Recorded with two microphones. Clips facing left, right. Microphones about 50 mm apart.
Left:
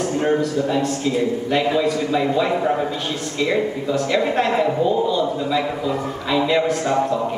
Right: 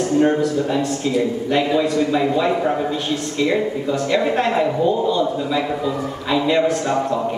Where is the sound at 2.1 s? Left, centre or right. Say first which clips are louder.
Right 1 dB; centre.